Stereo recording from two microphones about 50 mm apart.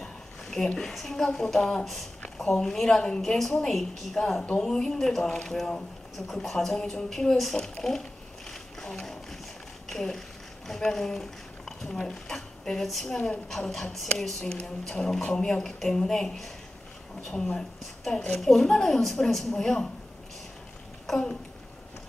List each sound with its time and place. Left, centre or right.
0.0 s a sound: centre
0.7 s speech: centre
7.6 s boat: centre
9.8 s a woman's voice: centre